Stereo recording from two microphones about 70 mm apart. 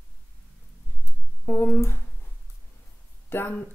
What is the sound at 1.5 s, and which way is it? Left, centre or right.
Speech, left.